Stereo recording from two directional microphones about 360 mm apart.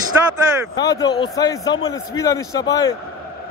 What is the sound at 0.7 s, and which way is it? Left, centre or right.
Speech, centre.